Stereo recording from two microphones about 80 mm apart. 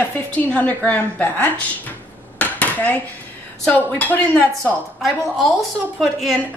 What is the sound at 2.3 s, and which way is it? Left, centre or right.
Dishes, left.